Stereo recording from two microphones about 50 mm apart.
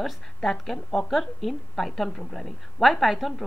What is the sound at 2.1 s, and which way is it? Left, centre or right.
Speech, centre.